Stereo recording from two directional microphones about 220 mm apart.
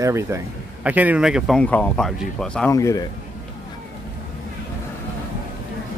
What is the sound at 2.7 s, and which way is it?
Speech, 15° left (ahead or behind).